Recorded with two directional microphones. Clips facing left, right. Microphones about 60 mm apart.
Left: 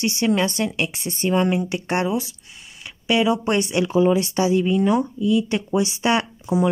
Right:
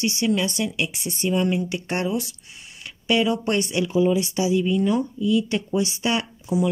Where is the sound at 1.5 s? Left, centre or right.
Left.